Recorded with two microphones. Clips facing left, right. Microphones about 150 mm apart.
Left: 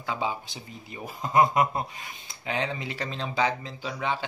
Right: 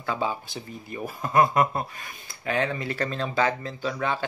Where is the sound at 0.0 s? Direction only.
15° left (ahead or behind).